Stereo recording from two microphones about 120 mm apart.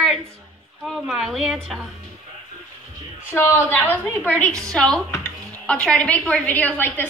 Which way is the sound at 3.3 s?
20° left (ahead or behind).